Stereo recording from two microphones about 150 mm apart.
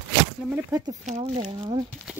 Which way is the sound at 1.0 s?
45° right (ahead or behind).